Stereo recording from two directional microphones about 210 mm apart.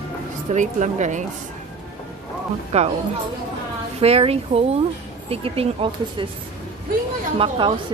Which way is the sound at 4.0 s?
30° right (ahead or behind).